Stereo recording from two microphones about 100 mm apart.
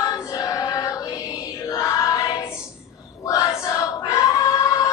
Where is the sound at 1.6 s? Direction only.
30° left (ahead or behind).